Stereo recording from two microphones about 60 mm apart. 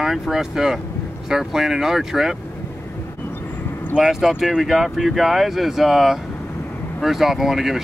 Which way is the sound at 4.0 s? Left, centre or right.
Centre.